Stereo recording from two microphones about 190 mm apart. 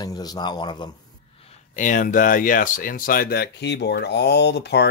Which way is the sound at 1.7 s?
45° left (ahead or behind).